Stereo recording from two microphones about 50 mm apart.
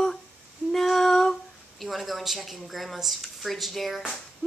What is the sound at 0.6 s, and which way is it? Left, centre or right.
Female singing, centre.